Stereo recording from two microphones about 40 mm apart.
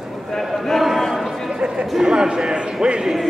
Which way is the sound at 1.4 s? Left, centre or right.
Right.